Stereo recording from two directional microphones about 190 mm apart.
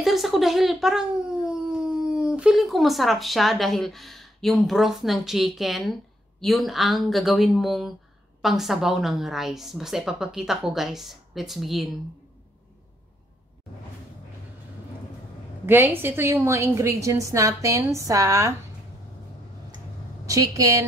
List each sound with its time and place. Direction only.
0.0 s a woman's voice: centre (ahead or behind)
15.6 s a woman's voice: 10° right (ahead or behind)
20.2 s a woman's voice: 15° right (ahead or behind)